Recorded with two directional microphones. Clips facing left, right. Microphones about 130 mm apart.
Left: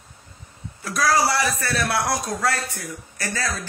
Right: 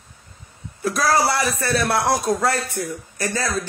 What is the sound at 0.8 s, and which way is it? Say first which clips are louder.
Speech: right 2 dB; 25° right (ahead or behind).